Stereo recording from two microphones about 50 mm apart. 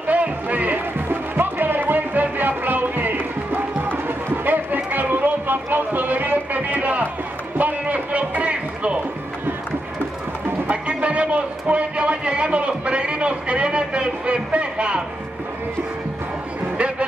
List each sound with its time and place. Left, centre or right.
0.1 s speech: right
0.9 s music: right
4.5 s a sound: right
10.7 s a man's voice: right